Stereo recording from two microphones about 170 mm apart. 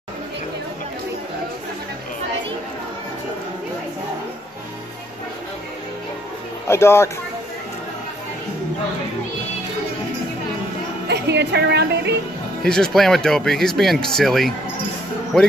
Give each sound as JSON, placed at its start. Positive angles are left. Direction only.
{"t": 6.7, "sound": "speech", "side_deg": 15}
{"t": 11.1, "sound": "speech", "side_deg": -85}
{"t": 12.6, "sound": "speech", "side_deg": 5}